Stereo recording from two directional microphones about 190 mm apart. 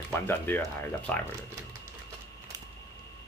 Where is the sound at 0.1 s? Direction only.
10° left (ahead or behind).